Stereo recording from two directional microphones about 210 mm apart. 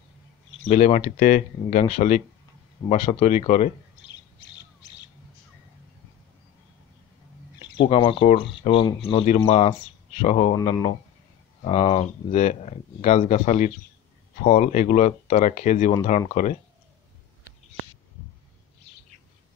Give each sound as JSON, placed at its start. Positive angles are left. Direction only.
{"t": 0.6, "sound": "speech", "side_deg": 35}
{"t": 7.5, "sound": "bird", "side_deg": 20}
{"t": 7.9, "sound": "speech", "side_deg": 25}